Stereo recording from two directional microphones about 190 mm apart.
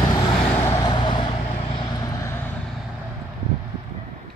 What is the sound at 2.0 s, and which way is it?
Vehicle, 15° left (ahead or behind).